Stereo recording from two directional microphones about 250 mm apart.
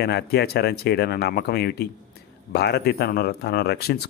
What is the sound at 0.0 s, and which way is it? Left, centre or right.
Speech, left.